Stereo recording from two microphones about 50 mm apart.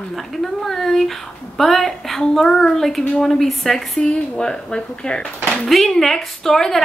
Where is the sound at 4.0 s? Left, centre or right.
Centre.